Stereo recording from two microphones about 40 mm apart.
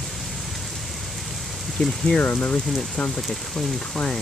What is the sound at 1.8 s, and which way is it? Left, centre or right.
Speech, left.